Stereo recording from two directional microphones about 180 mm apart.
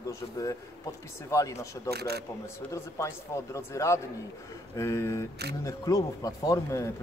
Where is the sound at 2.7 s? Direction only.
15° left (ahead or behind).